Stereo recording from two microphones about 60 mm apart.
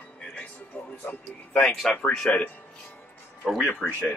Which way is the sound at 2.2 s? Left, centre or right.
Left.